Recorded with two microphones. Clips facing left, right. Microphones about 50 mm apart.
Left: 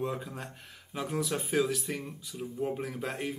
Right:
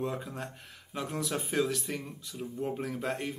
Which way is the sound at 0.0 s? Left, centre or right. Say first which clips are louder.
Even; centre.